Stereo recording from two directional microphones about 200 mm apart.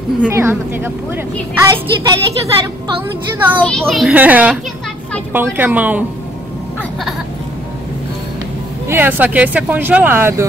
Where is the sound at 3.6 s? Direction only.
5° left (ahead or behind).